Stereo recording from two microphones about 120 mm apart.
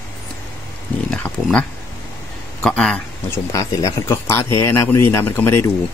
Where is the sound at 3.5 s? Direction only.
30° left (ahead or behind).